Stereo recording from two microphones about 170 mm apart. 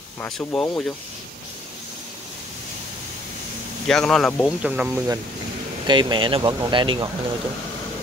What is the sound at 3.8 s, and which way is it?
Speech, 5° left (ahead or behind).